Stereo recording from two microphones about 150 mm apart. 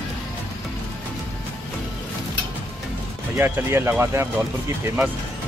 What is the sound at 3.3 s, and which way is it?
Speech, 15° right (ahead or behind).